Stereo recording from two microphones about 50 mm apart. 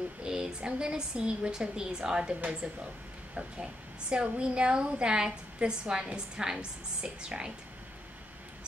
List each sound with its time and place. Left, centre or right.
0.2 s a woman's voice: centre
4.2 s a woman's voice: centre